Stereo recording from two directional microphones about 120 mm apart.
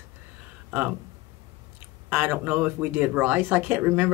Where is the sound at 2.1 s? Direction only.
15° right (ahead or behind).